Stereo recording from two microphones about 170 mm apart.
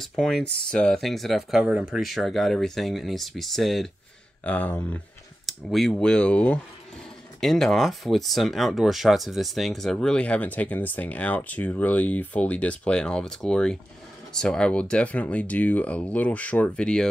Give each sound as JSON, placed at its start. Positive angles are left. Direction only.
{"t": 0.0, "sound": "speech", "side_deg": 0}